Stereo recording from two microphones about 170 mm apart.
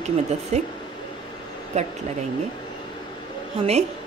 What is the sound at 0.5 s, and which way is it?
Speech, 40° right (ahead or behind).